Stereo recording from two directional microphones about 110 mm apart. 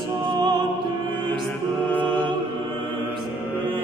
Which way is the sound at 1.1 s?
10° left (ahead or behind).